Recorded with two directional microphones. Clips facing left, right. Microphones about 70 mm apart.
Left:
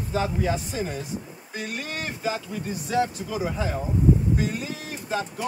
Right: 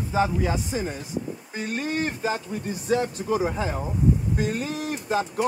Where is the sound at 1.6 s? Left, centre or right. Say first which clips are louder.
Right 5 dB; right.